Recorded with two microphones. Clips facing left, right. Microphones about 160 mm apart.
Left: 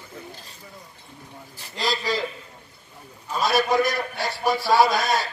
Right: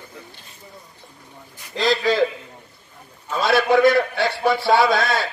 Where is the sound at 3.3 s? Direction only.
60° right (ahead or behind).